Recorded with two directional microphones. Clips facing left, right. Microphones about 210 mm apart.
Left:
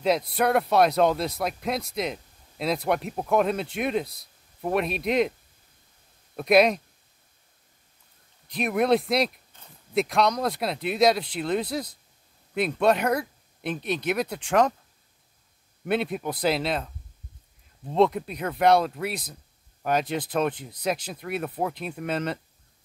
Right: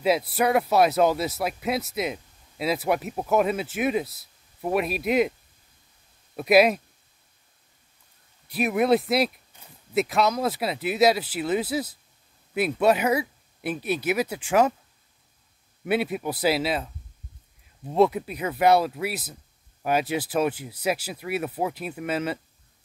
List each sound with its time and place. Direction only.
0.0 s speech: 5° right (ahead or behind)
6.3 s speech: 5° right (ahead or behind)
8.5 s speech: 5° right (ahead or behind)
15.8 s speech: 5° right (ahead or behind)
17.9 s speech: 5° right (ahead or behind)